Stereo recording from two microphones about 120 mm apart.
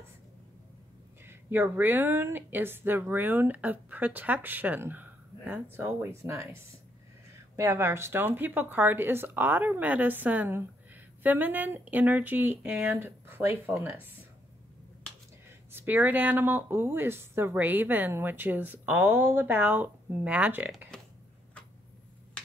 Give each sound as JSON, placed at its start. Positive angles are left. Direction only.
{"t": 1.2, "sound": "speech", "side_deg": -20}
{"t": 12.9, "sound": "speech", "side_deg": -20}
{"t": 15.7, "sound": "speech", "side_deg": -15}